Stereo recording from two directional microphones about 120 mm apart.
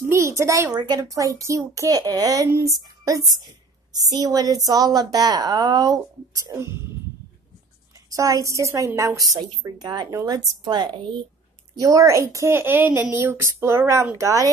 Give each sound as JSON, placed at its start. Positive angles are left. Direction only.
{"t": 0.1, "sound": "a sound", "side_deg": -25}
{"t": 0.7, "sound": "a woman's voice", "side_deg": -30}
{"t": 8.1, "sound": "a woman's voice", "side_deg": -30}